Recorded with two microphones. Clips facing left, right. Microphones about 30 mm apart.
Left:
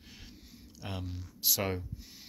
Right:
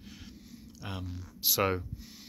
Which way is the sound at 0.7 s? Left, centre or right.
Centre.